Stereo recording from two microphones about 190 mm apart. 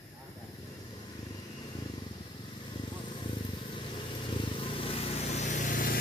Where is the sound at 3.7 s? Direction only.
25° left (ahead or behind); by 6.0 s 45° left (ahead or behind).